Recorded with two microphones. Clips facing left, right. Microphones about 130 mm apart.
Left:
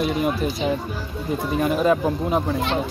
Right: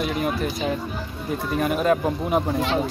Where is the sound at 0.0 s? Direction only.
Centre (ahead or behind).